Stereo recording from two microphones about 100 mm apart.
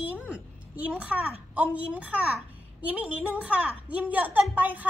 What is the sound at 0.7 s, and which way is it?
A woman's voice, 15° right (ahead or behind).